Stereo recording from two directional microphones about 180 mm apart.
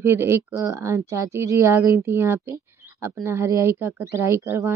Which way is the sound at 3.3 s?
15° right (ahead or behind).